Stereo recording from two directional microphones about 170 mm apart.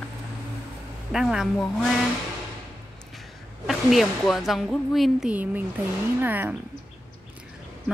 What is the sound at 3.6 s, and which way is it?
Speech, centre (ahead or behind).